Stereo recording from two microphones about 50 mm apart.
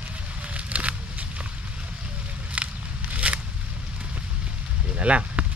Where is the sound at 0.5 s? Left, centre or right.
Right.